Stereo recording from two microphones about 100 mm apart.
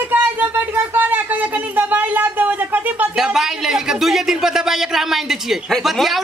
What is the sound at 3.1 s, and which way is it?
Speech, 5° right (ahead or behind).